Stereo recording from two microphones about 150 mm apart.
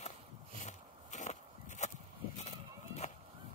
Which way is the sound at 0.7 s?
55° left (ahead or behind).